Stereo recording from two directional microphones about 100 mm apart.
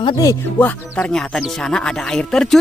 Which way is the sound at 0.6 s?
15° left (ahead or behind).